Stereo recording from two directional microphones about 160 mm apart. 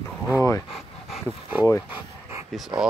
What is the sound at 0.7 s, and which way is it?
Dog, centre (ahead or behind).